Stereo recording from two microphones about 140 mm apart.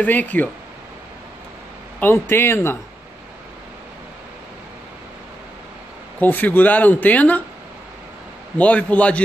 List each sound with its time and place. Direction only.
0.0 s speech: 10° left (ahead or behind)
2.0 s speech: 15° left (ahead or behind)
6.1 s speech: 10° left (ahead or behind)
8.5 s speech: 10° left (ahead or behind)